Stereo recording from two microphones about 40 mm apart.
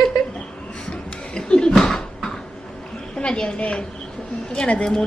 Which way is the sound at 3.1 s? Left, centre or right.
Left.